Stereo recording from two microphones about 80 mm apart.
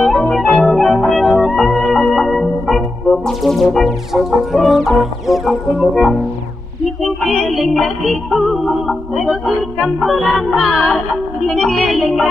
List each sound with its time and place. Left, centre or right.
0.0 s organ: centre
3.3 s music: centre